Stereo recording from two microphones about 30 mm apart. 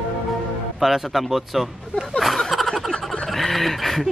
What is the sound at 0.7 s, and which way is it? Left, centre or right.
Speech, centre.